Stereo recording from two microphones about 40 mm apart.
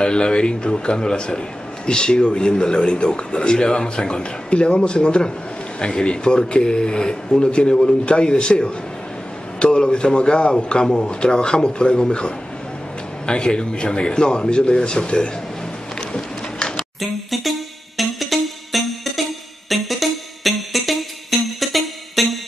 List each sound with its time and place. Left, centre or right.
0.0 s speech: left
16.0 s a sound: left
17.0 s music: centre